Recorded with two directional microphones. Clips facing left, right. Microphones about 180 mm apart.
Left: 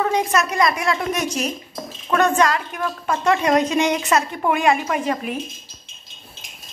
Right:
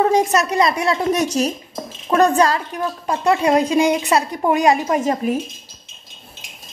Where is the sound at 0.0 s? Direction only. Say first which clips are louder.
Right 4 dB; 40° right (ahead or behind).